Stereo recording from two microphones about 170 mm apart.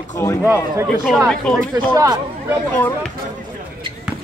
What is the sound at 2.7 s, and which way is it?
Speech, 10° left (ahead or behind).